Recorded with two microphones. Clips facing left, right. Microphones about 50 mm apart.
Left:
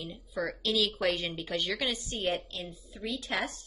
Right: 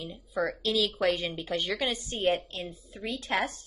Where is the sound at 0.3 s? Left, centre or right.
Centre.